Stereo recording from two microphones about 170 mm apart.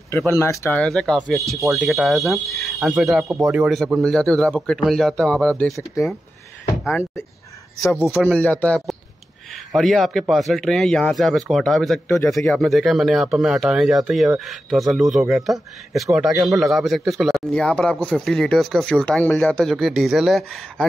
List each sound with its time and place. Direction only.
0.7 s speech: 5° left (ahead or behind)
8.1 s speech: 5° left (ahead or behind)